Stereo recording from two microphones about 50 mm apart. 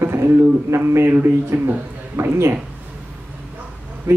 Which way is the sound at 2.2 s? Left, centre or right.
Right.